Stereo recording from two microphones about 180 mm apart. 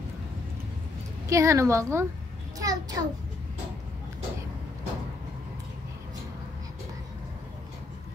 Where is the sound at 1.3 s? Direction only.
15° right (ahead or behind).